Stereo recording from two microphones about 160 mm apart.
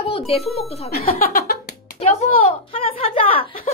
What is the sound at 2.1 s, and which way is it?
A child's voice, 40° left (ahead or behind).